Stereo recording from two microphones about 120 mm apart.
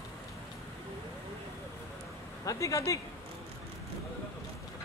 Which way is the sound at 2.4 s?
25° left (ahead or behind).